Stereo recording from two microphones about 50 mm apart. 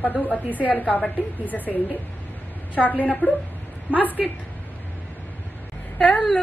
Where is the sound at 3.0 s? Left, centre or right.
Left.